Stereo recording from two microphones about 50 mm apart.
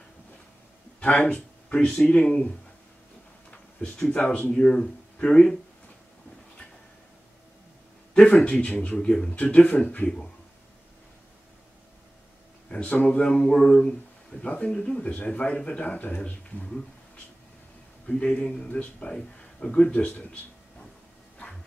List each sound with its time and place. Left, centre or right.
1.3 s a sound: left
2.0 s speech: left
4.1 s speech: left
8.1 s speech: centre
8.9 s speech: centre
9.3 s speech: left
12.6 s a sound: left
13.0 s speech: left
18.0 s speech: left
19.9 s speech: left